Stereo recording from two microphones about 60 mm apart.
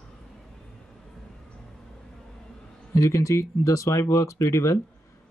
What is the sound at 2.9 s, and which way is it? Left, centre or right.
Speech, left.